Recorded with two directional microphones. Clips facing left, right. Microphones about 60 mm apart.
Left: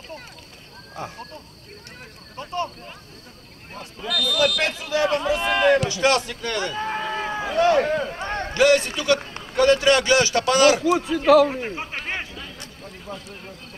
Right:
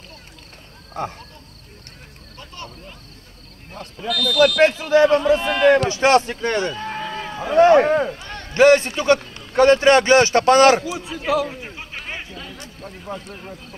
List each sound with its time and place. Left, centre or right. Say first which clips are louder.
1.0 s speech: right 6 dB; right
2.3 s speech: left 10 dB; left
4.0 s speech: right 3 dB; centre
4.6 s a man's voice: right 9 dB; right
5.2 s speech: right 4 dB; centre
5.9 s a man's voice: right 5 dB; right
6.7 s run: left 1 dB; centre
7.2 s a sound: left 1 dB; centre
7.5 s a man's voice: right 7 dB; right
8.2 s a sound: left 7 dB; left
8.5 s a man's voice: right 5 dB; right
11.1 s speech: left 6 dB; left
11.5 s speech: left 6 dB; left